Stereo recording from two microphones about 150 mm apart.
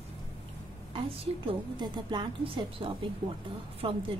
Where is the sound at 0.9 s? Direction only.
35° right (ahead or behind).